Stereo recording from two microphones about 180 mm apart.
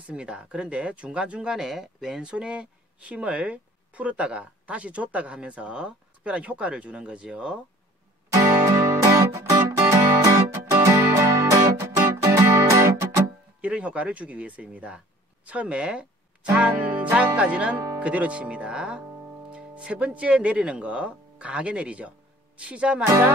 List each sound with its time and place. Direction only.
0.0 s speech: 5° right (ahead or behind)
8.3 s music: 15° right (ahead or behind)
15.4 s speech: 5° right (ahead or behind)